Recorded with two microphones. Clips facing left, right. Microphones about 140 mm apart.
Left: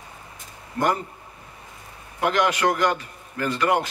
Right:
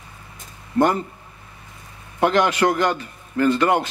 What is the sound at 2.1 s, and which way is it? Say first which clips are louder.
A man's voice: right 4 dB; 30° right (ahead or behind).